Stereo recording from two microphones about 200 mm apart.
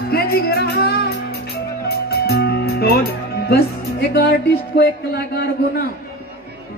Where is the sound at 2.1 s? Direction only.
55° left (ahead or behind).